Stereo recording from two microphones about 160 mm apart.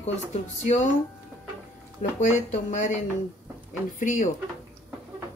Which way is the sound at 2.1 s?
45° left (ahead or behind).